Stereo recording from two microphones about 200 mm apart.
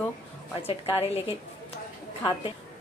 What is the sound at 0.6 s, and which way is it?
Speech, 30° left (ahead or behind).